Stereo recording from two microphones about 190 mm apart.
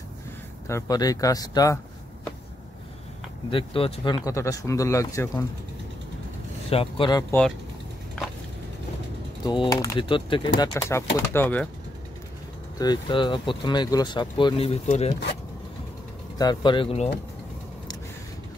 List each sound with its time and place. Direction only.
0.7 s speech: 15° left (ahead or behind)
3.4 s speech: 30° left (ahead or behind)
6.7 s speech: 30° left (ahead or behind)
9.4 s speech: 25° left (ahead or behind)
12.7 s speech: 20° left (ahead or behind)
16.3 s speech: 25° left (ahead or behind)